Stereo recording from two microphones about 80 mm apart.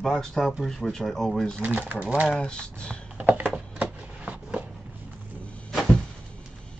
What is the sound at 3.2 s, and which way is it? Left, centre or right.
Typing, centre.